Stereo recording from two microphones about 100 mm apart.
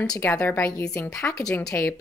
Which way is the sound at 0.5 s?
25° left (ahead or behind).